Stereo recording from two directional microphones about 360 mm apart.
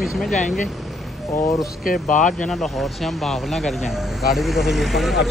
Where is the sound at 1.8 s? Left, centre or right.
Left.